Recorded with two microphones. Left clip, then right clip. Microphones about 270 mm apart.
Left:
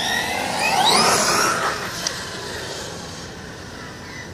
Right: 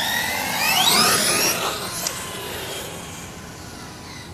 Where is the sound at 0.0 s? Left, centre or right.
Right; by 1.5 s centre.